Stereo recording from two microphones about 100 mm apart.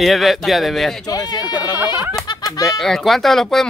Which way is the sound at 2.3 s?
40° left (ahead or behind).